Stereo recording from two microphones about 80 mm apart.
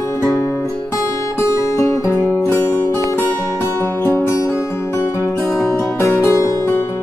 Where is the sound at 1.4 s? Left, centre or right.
Left.